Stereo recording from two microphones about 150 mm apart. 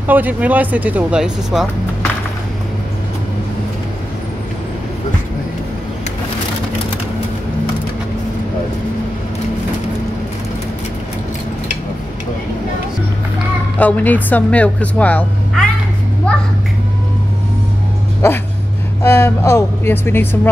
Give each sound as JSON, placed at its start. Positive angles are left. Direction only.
{"t": 0.0, "sound": "speech", "side_deg": -10}
{"t": 13.7, "sound": "speech", "side_deg": 10}
{"t": 18.2, "sound": "speech", "side_deg": 15}